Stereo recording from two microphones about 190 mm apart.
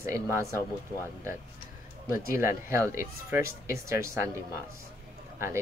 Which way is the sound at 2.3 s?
15° right (ahead or behind).